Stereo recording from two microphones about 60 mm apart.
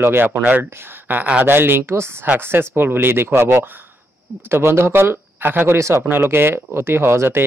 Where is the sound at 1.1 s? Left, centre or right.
Right.